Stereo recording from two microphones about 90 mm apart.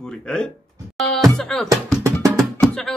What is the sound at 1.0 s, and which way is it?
Music, 5° left (ahead or behind).